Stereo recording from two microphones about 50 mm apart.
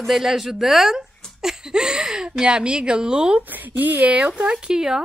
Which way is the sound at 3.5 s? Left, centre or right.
Right.